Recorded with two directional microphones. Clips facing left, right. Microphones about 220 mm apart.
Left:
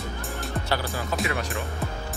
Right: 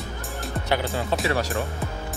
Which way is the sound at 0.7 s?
20° right (ahead or behind).